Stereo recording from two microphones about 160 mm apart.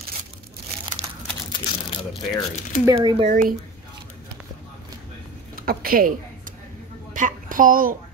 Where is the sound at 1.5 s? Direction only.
35° left (ahead or behind).